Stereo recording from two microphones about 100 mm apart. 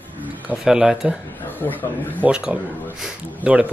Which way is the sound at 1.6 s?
25° left (ahead or behind).